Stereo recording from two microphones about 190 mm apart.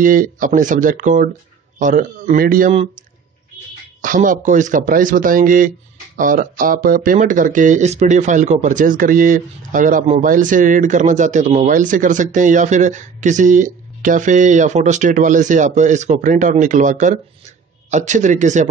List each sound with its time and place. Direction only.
0.0 s speech: 45° right (ahead or behind)
4.0 s speech: 45° right (ahead or behind)